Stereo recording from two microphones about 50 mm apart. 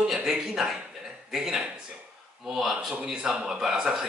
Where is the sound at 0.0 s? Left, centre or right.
Centre.